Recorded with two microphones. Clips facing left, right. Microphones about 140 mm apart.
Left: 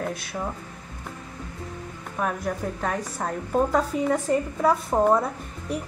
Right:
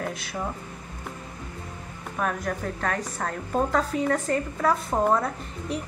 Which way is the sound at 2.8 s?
10° left (ahead or behind).